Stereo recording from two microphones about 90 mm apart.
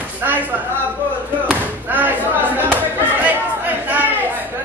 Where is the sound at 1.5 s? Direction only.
20° right (ahead or behind).